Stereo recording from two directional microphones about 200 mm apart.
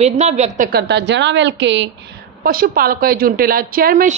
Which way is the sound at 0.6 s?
55° right (ahead or behind).